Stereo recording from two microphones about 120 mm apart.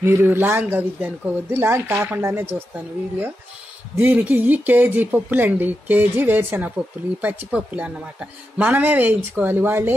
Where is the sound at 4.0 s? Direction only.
15° right (ahead or behind).